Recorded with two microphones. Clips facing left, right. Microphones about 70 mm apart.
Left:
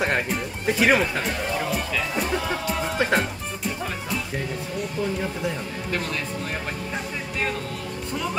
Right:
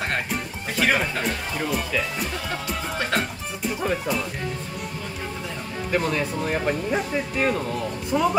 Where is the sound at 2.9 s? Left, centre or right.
Centre.